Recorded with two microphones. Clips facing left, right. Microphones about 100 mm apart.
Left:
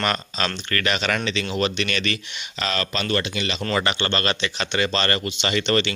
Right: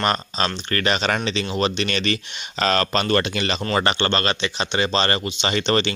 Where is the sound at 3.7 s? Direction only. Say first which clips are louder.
Right 3 dB; 35° right (ahead or behind).